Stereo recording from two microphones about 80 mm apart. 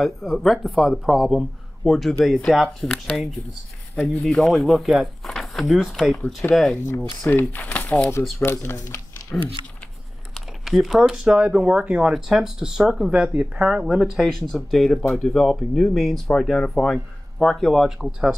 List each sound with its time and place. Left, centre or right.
0.0 s speech: centre
7.2 s speech: left
8.4 s speech: left
10.6 s speech: centre